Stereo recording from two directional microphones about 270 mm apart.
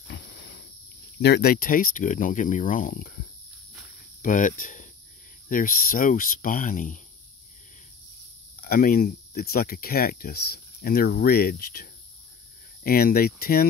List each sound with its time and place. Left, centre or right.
0.1 s a sound: left
1.2 s speech: left
4.2 s speech: left
8.6 s speech: left